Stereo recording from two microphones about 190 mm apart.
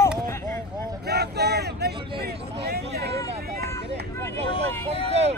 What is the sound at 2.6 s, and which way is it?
Hubbub, 55° right (ahead or behind).